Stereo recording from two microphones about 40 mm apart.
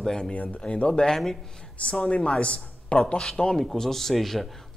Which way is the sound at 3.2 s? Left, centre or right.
Centre.